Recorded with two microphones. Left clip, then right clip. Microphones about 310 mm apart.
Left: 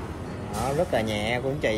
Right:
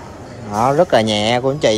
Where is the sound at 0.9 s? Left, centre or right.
Right.